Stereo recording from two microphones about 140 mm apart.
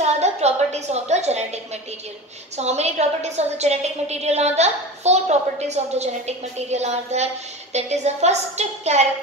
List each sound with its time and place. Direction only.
0.0 s a woman's voice: 50° right (ahead or behind)